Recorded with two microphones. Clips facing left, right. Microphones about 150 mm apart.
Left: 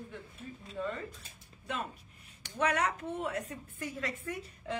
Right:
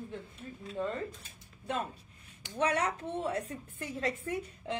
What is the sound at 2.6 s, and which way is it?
Speech, 30° right (ahead or behind).